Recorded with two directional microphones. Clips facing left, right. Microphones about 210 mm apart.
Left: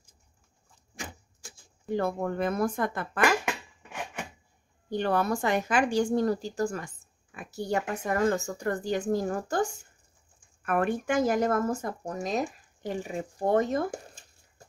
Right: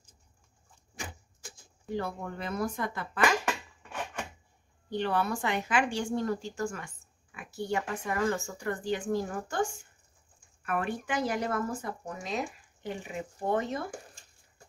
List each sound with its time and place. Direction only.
2.0 s speech: 50° left (ahead or behind)
3.4 s a sound: 10° left (ahead or behind)
4.8 s speech: 45° left (ahead or behind)
10.6 s speech: 50° left (ahead or behind)